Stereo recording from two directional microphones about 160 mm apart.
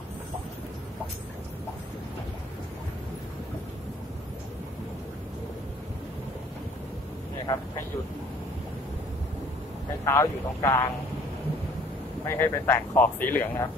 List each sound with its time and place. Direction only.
7.5 s speech: 25° left (ahead or behind)
10.0 s speech: 20° left (ahead or behind)
12.3 s speech: 15° left (ahead or behind)